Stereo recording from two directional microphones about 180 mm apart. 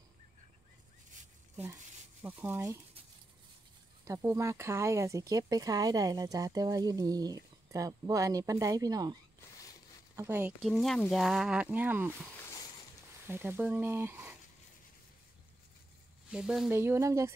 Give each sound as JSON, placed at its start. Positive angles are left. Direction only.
{"t": 2.2, "sound": "speech", "side_deg": -10}
{"t": 4.0, "sound": "speech", "side_deg": -15}
{"t": 10.1, "sound": "speech", "side_deg": -10}
{"t": 10.6, "sound": "speech", "side_deg": 0}
{"t": 13.3, "sound": "speech", "side_deg": -10}
{"t": 16.3, "sound": "speech", "side_deg": -5}